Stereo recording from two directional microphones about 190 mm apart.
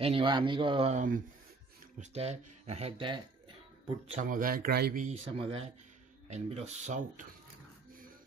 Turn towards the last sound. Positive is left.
turn(degrees=-40)  # may be behind; listen again after turning